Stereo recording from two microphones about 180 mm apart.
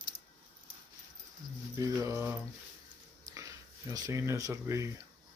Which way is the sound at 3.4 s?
20° right (ahead or behind).